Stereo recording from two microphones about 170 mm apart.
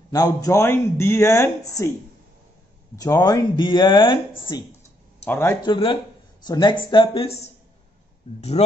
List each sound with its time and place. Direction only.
0.1 s speech: 20° left (ahead or behind)
3.0 s speech: 20° left (ahead or behind)
5.2 s speech: 15° left (ahead or behind)
5.6 s speech: 30° left (ahead or behind)